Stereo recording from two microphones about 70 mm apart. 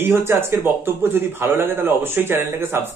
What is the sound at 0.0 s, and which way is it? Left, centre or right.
Speech, right.